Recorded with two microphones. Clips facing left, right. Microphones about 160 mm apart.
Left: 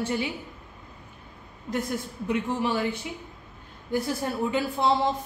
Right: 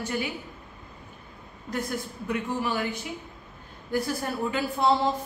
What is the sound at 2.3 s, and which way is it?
Speech, 25° left (ahead or behind).